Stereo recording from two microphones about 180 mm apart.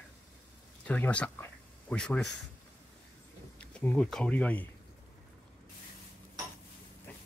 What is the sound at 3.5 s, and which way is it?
Speech, 5° left (ahead or behind).